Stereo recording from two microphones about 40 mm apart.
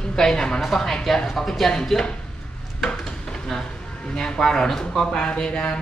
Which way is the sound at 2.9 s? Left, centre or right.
Centre.